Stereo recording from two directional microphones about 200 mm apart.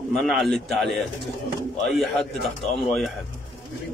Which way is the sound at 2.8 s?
Centre (ahead or behind).